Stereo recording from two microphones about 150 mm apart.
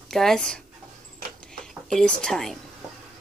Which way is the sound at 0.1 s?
Centre (ahead or behind).